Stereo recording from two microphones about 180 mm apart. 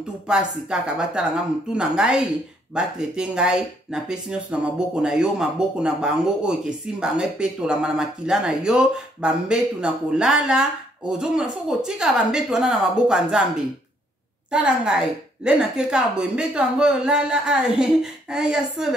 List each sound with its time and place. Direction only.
0.3 s speech: 5° right (ahead or behind)
14.5 s speech: 5° right (ahead or behind)